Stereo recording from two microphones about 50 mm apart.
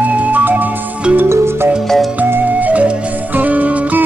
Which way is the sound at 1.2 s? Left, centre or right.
Right.